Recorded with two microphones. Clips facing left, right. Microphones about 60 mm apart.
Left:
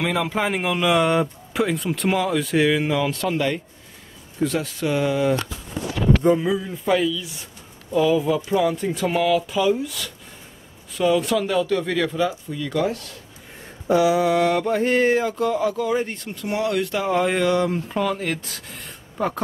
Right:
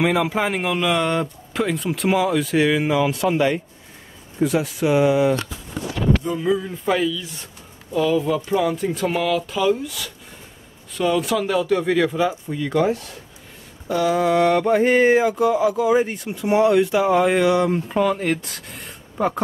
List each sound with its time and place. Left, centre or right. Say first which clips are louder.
0.0 s speech: right 3 dB; centre
6.4 s speech: right 2 dB; centre
14.0 s speech: right 4 dB; centre
14.7 s speech: right 4 dB; centre